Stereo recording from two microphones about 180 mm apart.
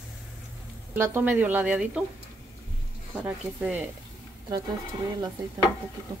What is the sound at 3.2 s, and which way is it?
Speech, 10° right (ahead or behind).